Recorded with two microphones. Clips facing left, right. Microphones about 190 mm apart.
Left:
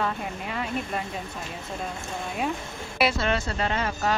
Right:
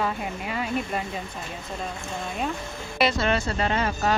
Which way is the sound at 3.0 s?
5° left (ahead or behind).